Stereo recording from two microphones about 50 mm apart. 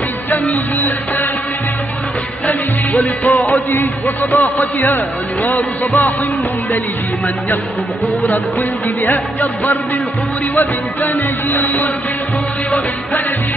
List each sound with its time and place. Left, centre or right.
0.3 s music: left
2.4 s music: left
8.2 s music: left